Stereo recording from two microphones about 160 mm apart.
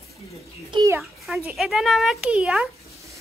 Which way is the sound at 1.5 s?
Centre (ahead or behind).